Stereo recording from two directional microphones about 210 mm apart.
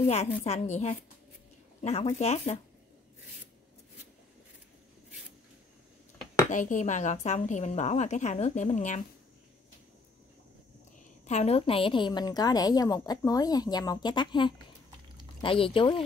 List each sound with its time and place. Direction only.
0.0 s a woman's voice: 30° left (ahead or behind)
6.5 s a woman's voice: 40° left (ahead or behind)
11.2 s a woman's voice: 30° left (ahead or behind)